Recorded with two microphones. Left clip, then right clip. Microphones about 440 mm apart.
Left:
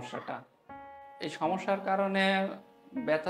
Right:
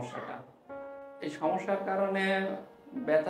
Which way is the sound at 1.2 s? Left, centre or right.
Left.